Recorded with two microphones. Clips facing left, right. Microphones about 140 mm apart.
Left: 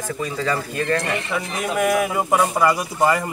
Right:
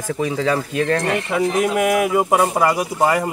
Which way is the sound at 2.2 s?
15° right (ahead or behind).